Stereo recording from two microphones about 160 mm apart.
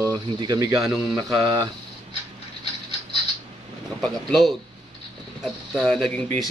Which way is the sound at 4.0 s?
Centre (ahead or behind).